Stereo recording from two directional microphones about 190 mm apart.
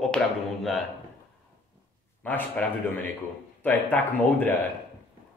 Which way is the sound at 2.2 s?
10° left (ahead or behind).